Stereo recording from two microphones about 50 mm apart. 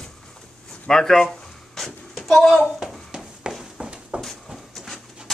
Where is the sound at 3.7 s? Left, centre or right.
Centre.